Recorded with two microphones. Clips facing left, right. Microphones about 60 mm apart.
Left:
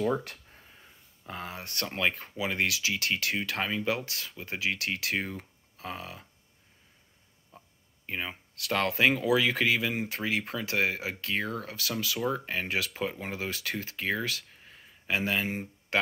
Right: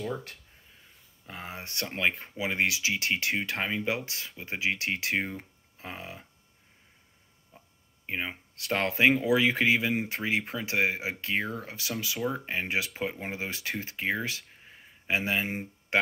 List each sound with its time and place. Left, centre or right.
1.4 s speech: right
7.5 s a sound: centre
8.1 s speech: right